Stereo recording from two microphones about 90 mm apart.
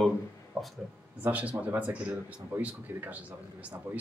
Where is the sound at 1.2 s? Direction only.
15° right (ahead or behind).